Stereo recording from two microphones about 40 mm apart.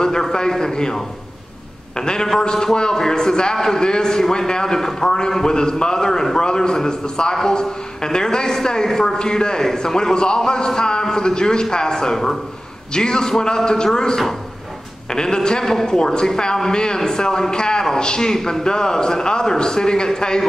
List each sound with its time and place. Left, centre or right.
0.0 s a man's voice: centre
2.0 s a man's voice: centre